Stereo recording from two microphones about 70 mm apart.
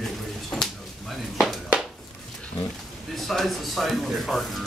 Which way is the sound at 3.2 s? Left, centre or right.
Centre.